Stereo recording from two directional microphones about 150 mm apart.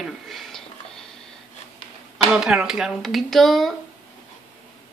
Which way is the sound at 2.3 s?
5° right (ahead or behind).